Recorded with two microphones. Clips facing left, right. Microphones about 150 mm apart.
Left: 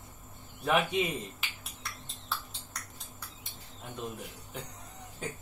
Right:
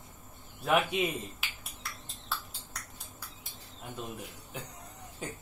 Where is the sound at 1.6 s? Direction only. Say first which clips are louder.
Even; centre (ahead or behind).